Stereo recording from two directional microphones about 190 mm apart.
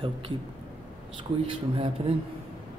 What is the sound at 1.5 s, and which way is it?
Speech, 30° right (ahead or behind).